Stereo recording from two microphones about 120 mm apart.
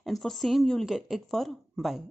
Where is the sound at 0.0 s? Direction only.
Centre (ahead or behind).